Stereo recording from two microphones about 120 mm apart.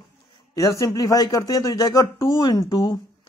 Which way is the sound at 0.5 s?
25° left (ahead or behind).